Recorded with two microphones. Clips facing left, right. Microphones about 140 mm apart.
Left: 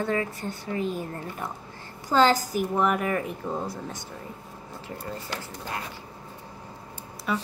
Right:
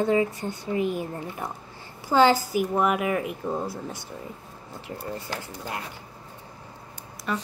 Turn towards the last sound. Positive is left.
turn(degrees=5)  # may be behind; listen again after turning